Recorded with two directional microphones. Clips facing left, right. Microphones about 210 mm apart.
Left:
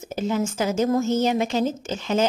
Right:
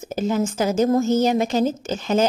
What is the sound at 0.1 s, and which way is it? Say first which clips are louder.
A woman's voice: right 2 dB; 40° right (ahead or behind).